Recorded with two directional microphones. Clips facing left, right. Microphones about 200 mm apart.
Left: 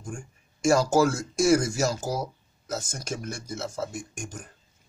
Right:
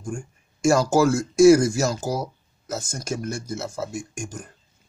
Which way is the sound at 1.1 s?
10° right (ahead or behind).